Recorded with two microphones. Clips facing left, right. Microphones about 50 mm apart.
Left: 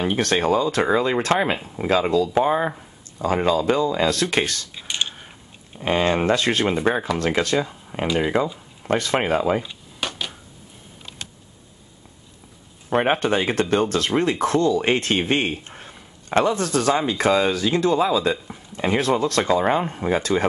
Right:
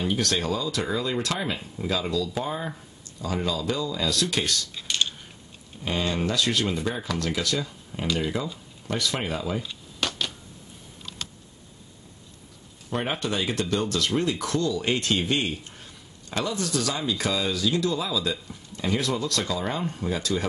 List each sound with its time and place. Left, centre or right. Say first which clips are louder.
0.0 s speech: left 6 dB; left
4.7 s typing: left 1 dB; centre
5.8 s speech: left 7 dB; left
9.6 s a sound: left 2 dB; centre
12.9 s speech: left 8 dB; left